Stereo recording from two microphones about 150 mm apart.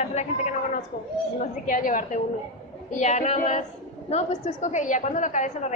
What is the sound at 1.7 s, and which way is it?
Speech, 60° left (ahead or behind).